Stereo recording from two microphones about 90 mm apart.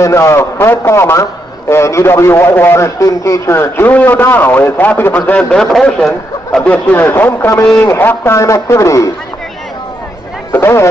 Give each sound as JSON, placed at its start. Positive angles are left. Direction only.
{"t": 0.0, "sound": "a man's voice", "side_deg": 30}
{"t": 6.6, "sound": "a man's voice", "side_deg": 15}
{"t": 10.5, "sound": "a man's voice", "side_deg": 30}